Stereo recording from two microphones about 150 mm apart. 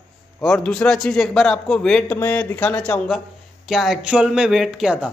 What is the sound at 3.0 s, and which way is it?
Speech, centre (ahead or behind).